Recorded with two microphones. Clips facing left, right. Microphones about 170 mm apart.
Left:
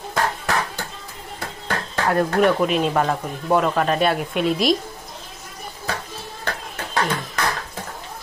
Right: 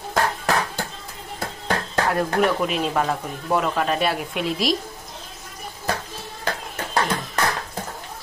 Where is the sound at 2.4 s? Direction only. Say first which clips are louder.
Left 3 dB; centre (ahead or behind).